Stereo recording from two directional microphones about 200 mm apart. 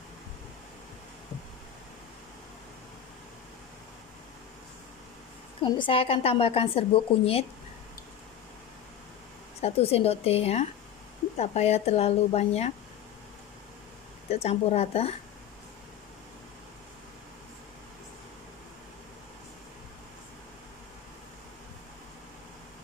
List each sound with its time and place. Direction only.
5.6 s speech: 25° left (ahead or behind)
9.6 s speech: 30° left (ahead or behind)
14.3 s speech: 30° left (ahead or behind)